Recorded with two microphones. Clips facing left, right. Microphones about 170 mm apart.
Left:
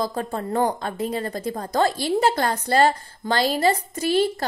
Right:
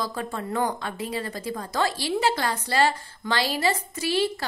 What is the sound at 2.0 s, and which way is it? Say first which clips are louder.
A woman's voice: left 4 dB; 50° left (ahead or behind).